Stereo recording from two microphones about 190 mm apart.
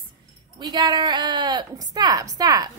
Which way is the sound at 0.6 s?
20° right (ahead or behind).